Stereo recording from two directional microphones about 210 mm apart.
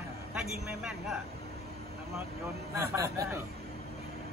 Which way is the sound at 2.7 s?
15° right (ahead or behind).